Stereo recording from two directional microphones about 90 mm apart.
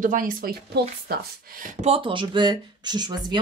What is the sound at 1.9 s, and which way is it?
Speech, 75° right (ahead or behind).